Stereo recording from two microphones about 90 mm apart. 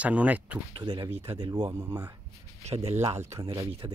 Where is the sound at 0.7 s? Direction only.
55° right (ahead or behind).